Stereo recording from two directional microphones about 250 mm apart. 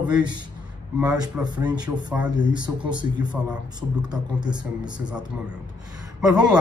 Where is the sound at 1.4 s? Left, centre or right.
Centre.